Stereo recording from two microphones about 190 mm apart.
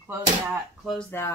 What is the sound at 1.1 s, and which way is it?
Speech, 15° left (ahead or behind).